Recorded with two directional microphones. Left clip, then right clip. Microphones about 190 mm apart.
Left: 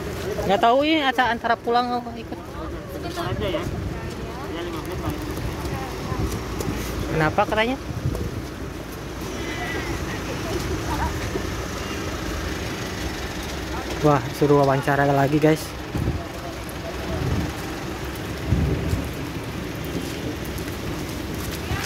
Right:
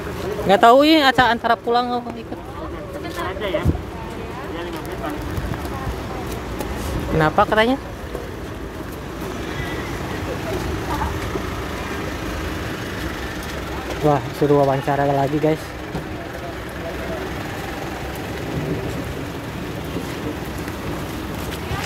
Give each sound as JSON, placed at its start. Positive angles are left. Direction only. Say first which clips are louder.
{"t": 0.5, "sound": "speech", "louder": "right 6 dB", "side_deg": -25}
{"t": 7.2, "sound": "speech", "louder": "right 5 dB", "side_deg": -15}
{"t": 14.0, "sound": "speech", "louder": "right 1 dB", "side_deg": 5}